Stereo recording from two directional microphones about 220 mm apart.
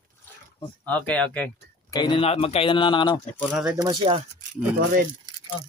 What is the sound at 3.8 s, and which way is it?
Speech, 20° right (ahead or behind).